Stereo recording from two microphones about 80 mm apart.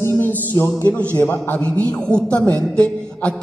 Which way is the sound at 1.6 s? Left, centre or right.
Centre.